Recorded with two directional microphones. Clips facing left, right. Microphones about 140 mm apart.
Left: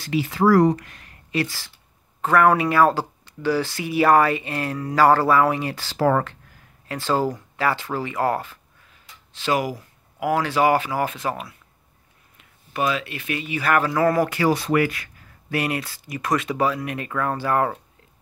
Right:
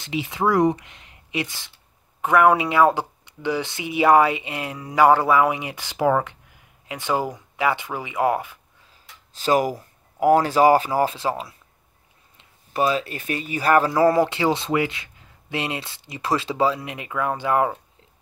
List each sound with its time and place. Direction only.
0.0 s speech: 20° right (ahead or behind)
9.3 s speech: 40° right (ahead or behind); by 17.7 s 15° right (ahead or behind)